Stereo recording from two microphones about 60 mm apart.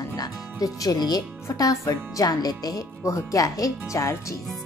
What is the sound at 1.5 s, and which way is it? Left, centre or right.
Speech, left.